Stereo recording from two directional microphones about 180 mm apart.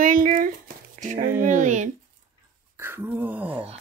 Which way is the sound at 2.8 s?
10° right (ahead or behind).